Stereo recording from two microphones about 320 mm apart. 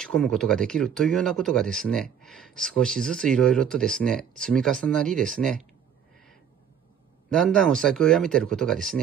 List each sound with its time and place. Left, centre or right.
0.0 s speech: centre
7.3 s speech: centre